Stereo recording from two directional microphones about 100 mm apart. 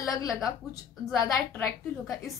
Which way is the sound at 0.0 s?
35° left (ahead or behind).